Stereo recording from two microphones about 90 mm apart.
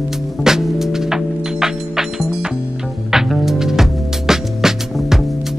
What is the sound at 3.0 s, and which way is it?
Music, 5° right (ahead or behind).